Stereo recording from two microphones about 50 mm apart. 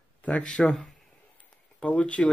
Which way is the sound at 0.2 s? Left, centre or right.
Left.